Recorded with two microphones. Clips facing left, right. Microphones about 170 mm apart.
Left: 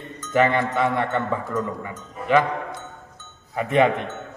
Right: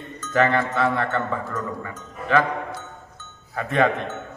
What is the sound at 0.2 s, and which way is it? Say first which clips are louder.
A man's voice: left 1 dB; 15° left (ahead or behind).